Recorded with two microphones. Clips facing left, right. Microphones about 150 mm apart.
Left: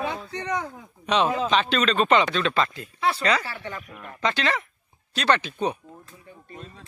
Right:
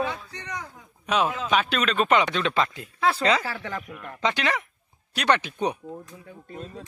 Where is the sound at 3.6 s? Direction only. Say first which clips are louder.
Right 2 dB; 90° right.